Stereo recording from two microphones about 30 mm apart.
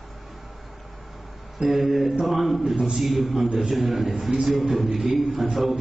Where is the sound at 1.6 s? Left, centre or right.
Centre.